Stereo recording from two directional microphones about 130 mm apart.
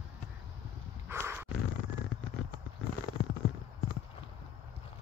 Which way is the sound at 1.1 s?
15° right (ahead or behind).